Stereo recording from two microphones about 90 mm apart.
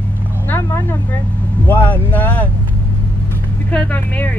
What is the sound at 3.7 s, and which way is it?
Speech, 15° left (ahead or behind).